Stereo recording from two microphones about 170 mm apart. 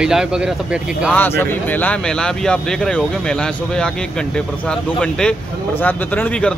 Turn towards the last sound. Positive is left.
turn(degrees=10)  # may be behind; listen again after turning